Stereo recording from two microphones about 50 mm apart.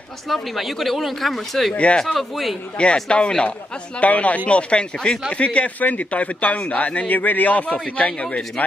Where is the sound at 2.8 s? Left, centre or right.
Left.